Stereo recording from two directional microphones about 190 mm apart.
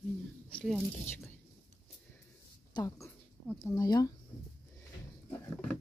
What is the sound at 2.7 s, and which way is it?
Speech, 20° left (ahead or behind).